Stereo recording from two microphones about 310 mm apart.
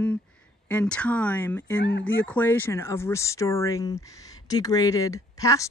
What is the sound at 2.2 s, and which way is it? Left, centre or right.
Speech, centre.